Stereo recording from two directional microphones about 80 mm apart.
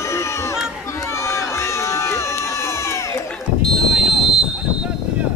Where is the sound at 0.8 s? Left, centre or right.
Left.